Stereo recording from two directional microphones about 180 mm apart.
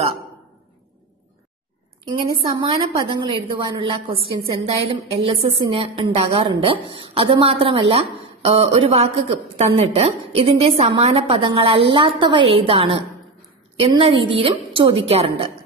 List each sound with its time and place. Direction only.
2.0 s a woman's voice: 30° right (ahead or behind)